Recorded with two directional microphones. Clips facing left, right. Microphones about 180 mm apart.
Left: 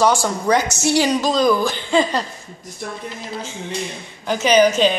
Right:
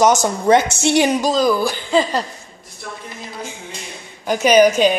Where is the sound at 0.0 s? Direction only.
20° right (ahead or behind).